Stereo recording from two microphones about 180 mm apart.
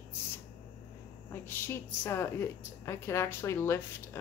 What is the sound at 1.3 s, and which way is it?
A woman's voice, 10° left (ahead or behind).